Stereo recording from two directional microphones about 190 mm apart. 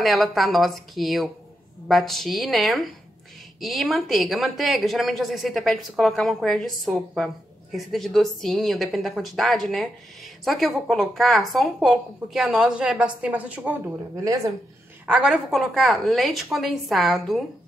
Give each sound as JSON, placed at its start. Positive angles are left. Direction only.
{"t": 0.0, "sound": "speech", "side_deg": 0}
{"t": 13.9, "sound": "speech", "side_deg": -20}
{"t": 15.0, "sound": "speech", "side_deg": -5}